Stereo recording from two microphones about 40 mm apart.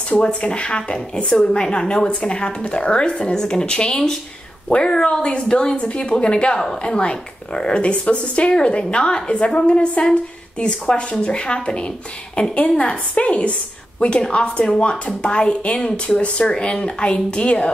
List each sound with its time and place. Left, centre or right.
0.4 s a woman's voice: left